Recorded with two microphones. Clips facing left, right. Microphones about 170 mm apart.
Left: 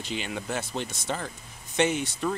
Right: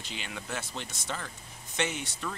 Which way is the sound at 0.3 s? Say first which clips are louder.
Left 3 dB; 30° left (ahead or behind).